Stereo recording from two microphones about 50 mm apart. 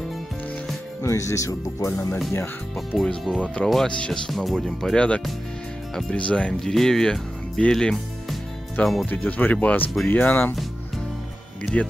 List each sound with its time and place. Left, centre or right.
1.0 s speech: left
2.9 s speech: centre
3.3 s speech: left
3.6 s speech: centre
4.9 s speech: left
6.6 s speech: centre
9.0 s speech: left
11.7 s speech: left